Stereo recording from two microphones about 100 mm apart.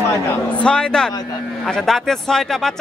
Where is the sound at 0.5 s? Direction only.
10° left (ahead or behind).